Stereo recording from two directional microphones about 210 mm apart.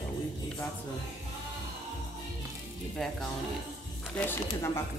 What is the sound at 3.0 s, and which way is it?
Speech, centre (ahead or behind).